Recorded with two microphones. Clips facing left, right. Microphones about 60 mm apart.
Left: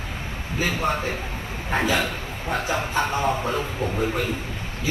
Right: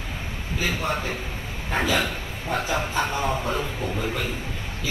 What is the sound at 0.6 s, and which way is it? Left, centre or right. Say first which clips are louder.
Speech: left 3 dB; left.